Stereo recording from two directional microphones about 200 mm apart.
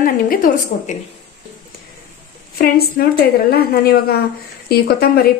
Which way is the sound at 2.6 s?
50° left (ahead or behind).